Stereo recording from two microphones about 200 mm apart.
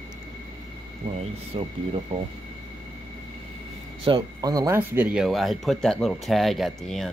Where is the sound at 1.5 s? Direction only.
25° right (ahead or behind).